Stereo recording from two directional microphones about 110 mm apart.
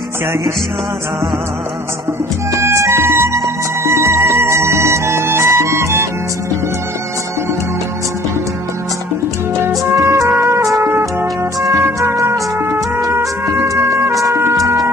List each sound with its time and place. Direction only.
2.5 s music: 25° right (ahead or behind)
9.6 s music: 25° right (ahead or behind)
13.7 s emergency vehicle: 30° right (ahead or behind)